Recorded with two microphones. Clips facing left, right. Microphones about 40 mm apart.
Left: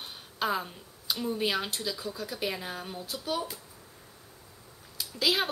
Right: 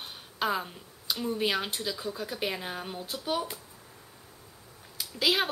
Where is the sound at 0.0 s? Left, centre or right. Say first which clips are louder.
Right 1 dB; centre.